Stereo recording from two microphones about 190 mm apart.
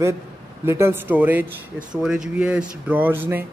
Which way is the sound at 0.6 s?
15° right (ahead or behind).